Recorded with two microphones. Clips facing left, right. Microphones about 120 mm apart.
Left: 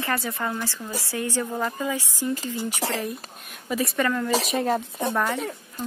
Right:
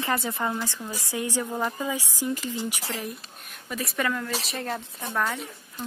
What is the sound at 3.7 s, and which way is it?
Speech, centre (ahead or behind).